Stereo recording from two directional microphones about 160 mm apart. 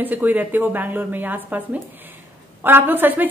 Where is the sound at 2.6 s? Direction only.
10° right (ahead or behind).